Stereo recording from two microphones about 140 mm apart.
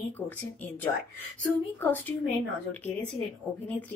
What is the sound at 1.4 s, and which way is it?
Speech, 10° left (ahead or behind).